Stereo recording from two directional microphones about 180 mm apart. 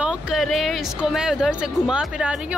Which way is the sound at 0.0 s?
5° right (ahead or behind).